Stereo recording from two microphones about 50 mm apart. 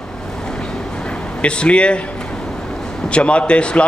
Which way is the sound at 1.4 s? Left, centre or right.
Left.